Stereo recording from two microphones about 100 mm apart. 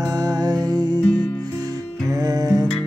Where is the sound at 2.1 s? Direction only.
40° right (ahead or behind).